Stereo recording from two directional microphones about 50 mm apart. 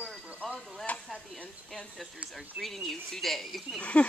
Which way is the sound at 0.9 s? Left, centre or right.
Left.